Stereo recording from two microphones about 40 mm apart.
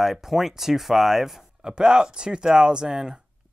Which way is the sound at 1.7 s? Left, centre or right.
Centre.